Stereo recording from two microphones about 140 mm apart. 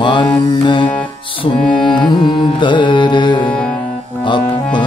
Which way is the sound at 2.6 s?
35° left (ahead or behind).